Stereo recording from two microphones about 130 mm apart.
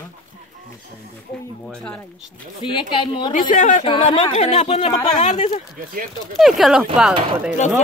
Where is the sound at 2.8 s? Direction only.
40° left (ahead or behind).